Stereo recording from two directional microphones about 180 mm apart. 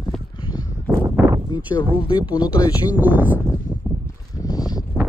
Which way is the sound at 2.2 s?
10° right (ahead or behind).